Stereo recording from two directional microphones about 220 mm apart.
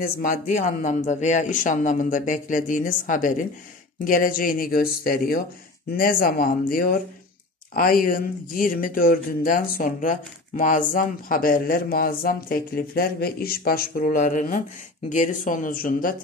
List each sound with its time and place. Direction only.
0.0 s speech: 40° left (ahead or behind)